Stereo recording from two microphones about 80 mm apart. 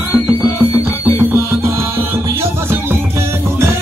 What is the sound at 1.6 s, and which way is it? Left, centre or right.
Music, right.